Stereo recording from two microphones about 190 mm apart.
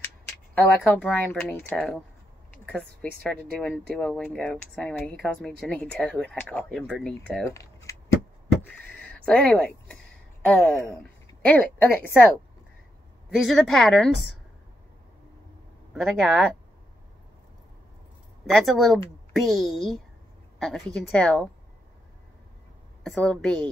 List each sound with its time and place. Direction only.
0.6 s a woman's voice: 5° left (ahead or behind)
7.4 s a sound: 15° left (ahead or behind)
8.6 s power windows: 10° left (ahead or behind)
10.4 s a woman's voice: 5° left (ahead or behind)
13.4 s speech: centre (ahead or behind)
15.9 s speech: centre (ahead or behind)
18.5 s speech: centre (ahead or behind)
23.0 s speech: centre (ahead or behind)